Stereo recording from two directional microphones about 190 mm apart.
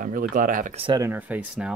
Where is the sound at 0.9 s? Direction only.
10° right (ahead or behind).